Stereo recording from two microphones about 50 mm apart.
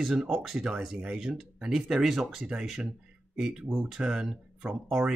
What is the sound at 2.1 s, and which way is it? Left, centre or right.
Speech, centre.